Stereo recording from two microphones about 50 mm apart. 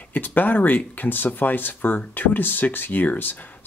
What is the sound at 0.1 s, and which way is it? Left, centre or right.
Speech, left.